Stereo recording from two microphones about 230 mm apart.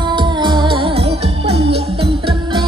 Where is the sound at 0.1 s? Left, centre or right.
Centre.